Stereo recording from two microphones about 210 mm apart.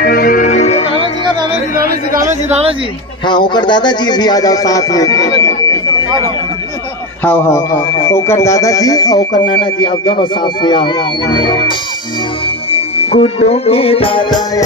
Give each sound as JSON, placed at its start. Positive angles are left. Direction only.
{"t": 0.0, "sound": "music", "side_deg": 45}
{"t": 3.3, "sound": "speech", "side_deg": 20}
{"t": 7.2, "sound": "speech", "side_deg": 10}
{"t": 13.1, "sound": "speech", "side_deg": 30}